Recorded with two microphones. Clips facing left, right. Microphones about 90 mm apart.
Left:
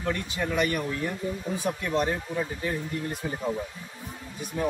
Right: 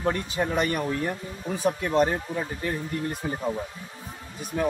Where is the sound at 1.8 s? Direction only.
40° right (ahead or behind).